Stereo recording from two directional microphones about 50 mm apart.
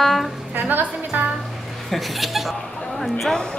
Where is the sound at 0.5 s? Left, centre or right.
Right.